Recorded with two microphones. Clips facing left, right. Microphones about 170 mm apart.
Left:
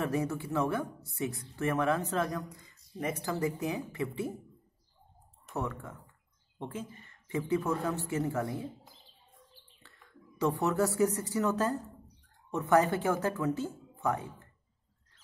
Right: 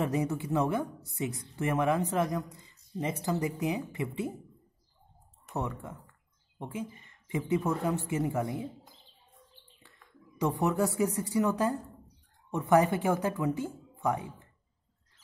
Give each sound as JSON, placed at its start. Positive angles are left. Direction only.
{"t": 0.0, "sound": "speech", "side_deg": -20}
{"t": 5.5, "sound": "speech", "side_deg": -20}
{"t": 10.4, "sound": "speech", "side_deg": -15}